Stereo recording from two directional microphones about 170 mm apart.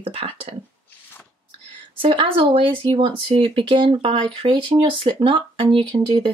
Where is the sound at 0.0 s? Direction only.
30° right (ahead or behind).